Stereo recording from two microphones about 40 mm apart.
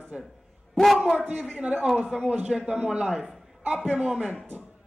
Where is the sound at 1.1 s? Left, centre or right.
Right.